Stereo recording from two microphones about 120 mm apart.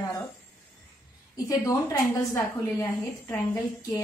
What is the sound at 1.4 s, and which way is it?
A woman's voice, 30° left (ahead or behind).